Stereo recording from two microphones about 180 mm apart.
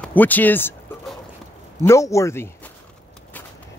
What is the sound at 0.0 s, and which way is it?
Speech, 10° left (ahead or behind).